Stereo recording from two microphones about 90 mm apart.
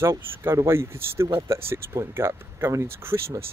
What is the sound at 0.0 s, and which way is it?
Speech, 30° right (ahead or behind).